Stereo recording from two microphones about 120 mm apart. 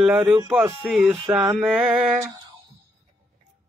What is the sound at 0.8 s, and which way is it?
Speech, centre (ahead or behind).